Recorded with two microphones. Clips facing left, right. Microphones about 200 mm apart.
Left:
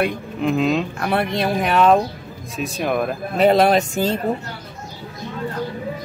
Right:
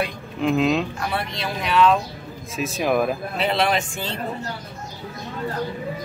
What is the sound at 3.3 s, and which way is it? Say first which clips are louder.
Speech: left 9 dB; 45° left (ahead or behind).